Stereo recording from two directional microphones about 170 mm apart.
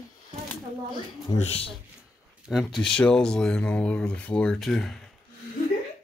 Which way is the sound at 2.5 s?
Centre (ahead or behind).